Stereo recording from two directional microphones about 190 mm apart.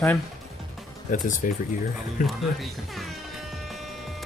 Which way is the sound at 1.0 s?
45° left (ahead or behind).